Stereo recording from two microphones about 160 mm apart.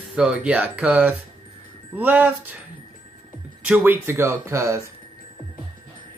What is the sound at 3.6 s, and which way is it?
Speech, 10° right (ahead or behind).